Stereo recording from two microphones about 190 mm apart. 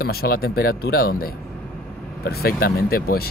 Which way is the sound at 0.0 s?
55° left (ahead or behind).